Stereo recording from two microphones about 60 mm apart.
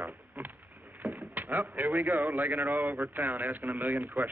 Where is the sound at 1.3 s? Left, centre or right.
Right.